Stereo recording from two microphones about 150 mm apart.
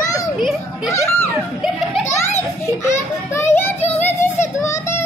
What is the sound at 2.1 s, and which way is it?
Children playing, 15° left (ahead or behind).